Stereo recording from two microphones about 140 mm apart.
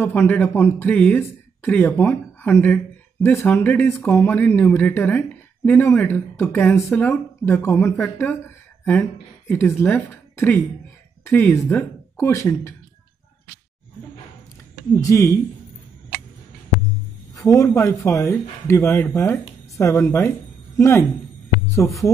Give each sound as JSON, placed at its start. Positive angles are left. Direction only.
{"t": 0.0, "sound": "speech", "side_deg": 15}
{"t": 15.0, "sound": "speech", "side_deg": 25}
{"t": 17.3, "sound": "speech", "side_deg": 25}